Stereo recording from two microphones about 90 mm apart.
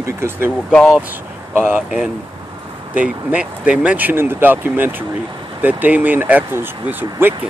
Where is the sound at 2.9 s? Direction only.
15° right (ahead or behind).